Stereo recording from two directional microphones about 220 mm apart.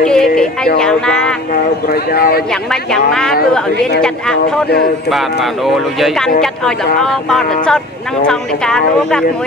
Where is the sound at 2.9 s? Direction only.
Centre (ahead or behind).